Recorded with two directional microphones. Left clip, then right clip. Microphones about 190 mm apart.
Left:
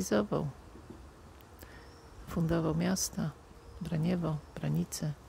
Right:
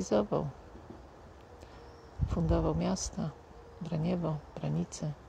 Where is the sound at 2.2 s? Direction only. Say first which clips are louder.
Right 1 dB; 20° left (ahead or behind).